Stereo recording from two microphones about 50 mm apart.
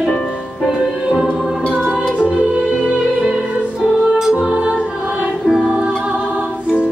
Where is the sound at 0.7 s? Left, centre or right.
Centre.